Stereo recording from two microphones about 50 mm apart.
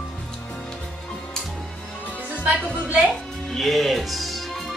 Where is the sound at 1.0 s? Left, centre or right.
Centre.